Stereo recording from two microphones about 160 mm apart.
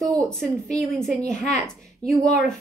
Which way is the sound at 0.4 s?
5° left (ahead or behind).